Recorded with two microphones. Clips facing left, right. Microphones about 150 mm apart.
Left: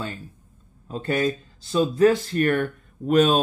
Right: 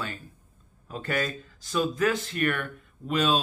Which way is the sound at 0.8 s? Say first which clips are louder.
Left 6 dB; 25° left (ahead or behind).